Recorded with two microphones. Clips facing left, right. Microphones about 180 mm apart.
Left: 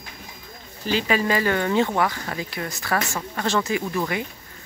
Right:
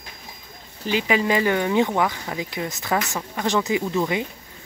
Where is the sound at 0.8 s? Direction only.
15° right (ahead or behind).